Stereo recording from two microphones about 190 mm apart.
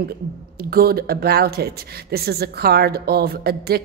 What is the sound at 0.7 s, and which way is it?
A woman's voice, 55° right (ahead or behind).